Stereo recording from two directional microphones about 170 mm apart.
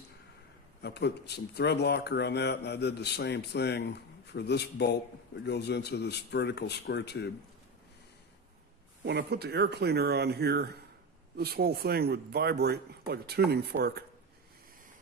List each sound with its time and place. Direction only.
0.8 s speech: 80° left
9.0 s speech: 75° right (ahead or behind)